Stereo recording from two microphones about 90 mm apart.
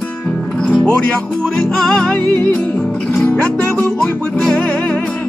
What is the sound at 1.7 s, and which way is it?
Music, 5° left (ahead or behind).